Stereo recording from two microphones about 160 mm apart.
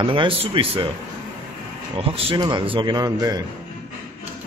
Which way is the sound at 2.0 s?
30° right (ahead or behind).